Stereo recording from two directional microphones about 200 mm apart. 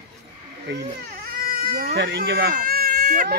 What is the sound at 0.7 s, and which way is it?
Speech, 55° right (ahead or behind).